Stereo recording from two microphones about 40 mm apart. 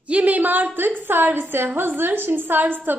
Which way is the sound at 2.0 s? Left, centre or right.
Right.